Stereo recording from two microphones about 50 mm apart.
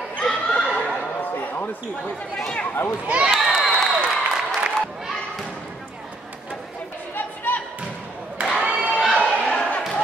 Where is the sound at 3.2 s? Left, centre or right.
Centre.